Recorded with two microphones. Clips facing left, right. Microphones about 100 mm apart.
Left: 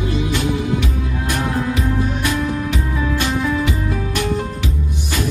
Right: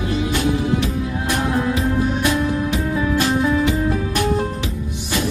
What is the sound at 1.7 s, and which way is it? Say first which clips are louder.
Music: right 1 dB; 25° right (ahead or behind).